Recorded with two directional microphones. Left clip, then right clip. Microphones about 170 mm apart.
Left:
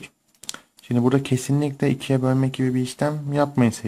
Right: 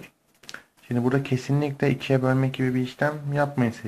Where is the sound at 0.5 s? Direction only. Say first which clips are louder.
Left 4 dB; 30° left (ahead or behind).